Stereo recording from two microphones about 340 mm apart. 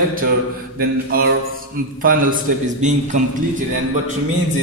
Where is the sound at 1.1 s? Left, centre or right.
Right.